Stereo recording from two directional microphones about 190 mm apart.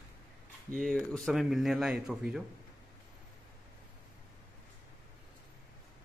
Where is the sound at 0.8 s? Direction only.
Centre (ahead or behind).